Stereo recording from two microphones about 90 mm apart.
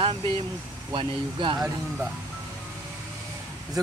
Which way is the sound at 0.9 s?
70° right (ahead or behind).